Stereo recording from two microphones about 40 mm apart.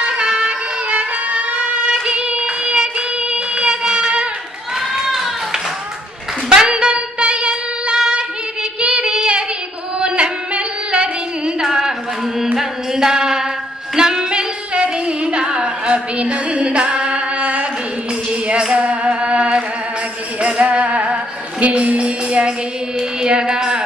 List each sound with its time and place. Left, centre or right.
0.5 s music: right
1.9 s child singing: right
4.7 s a sound: centre
6.7 s music: right
8.8 s child singing: right
9.9 s music: right
11.6 s a sound: centre
12.5 s music: centre
14.7 s singing: right
16.2 s female singing: right
20.3 s music: right
22.9 s music: centre